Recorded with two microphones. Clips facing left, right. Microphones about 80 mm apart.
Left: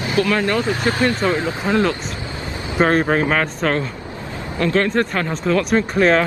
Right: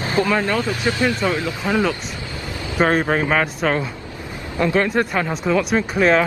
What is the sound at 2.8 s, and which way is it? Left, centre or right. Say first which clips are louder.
Speech: left 2 dB; centre.